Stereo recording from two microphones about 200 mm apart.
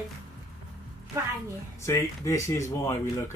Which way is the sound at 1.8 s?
15° left (ahead or behind).